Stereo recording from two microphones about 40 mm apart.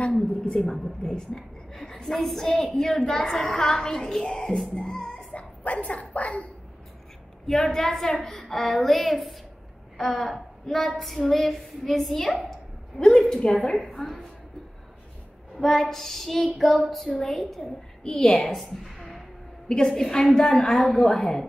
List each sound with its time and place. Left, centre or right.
0.2 s a woman's voice: left
0.8 s music: centre
1.7 s a woman's voice: centre
4.3 s music: centre
5.3 s a woman's voice: left
7.4 s a woman's voice: centre
13.7 s a woman's voice: centre
15.5 s a woman's voice: centre
18.0 s music: centre
18.5 s a sound: centre
19.7 s a woman's voice: centre